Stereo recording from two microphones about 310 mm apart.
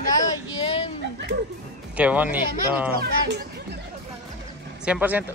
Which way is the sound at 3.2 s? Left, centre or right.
Right.